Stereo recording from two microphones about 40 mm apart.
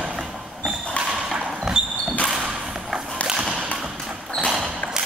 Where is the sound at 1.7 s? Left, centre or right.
Centre.